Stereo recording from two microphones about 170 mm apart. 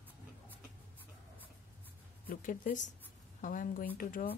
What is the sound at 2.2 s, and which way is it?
A woman's voice, 55° left (ahead or behind).